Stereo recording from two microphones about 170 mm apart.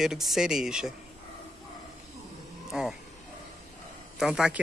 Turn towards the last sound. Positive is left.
turn(degrees=-5)  # may be behind; listen again after turning